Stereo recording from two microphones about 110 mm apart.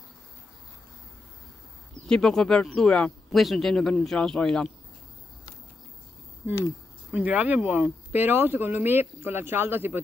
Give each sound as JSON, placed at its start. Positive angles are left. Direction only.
{"t": 2.0, "sound": "speech", "side_deg": 5}
{"t": 7.1, "sound": "speech", "side_deg": -15}